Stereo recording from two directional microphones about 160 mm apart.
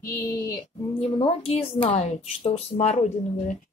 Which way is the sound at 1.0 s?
35° left (ahead or behind).